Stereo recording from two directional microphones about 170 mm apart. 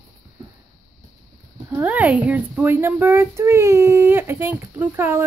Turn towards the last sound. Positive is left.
turn(degrees=-15)  # may be behind; listen again after turning